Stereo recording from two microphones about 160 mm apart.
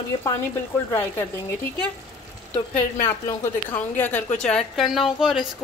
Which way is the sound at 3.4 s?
15° left (ahead or behind).